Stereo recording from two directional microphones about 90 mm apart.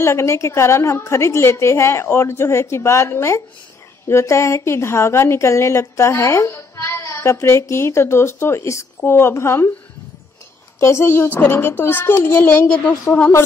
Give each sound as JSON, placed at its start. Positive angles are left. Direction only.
{"t": 0.0, "sound": "a woman's voice", "side_deg": 30}
{"t": 10.8, "sound": "a child's voice", "side_deg": 30}
{"t": 12.6, "sound": "a woman's voice", "side_deg": 10}